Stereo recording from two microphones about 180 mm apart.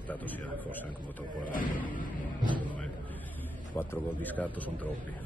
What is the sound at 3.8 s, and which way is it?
A man's voice, 10° left (ahead or behind).